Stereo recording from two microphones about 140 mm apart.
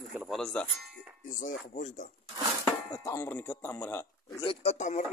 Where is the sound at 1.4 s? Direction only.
60° left (ahead or behind).